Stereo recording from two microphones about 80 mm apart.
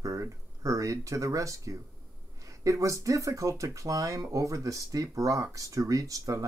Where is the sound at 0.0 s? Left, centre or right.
Right.